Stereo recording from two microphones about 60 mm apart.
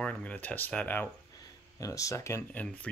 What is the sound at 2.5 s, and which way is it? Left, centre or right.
Speech, left.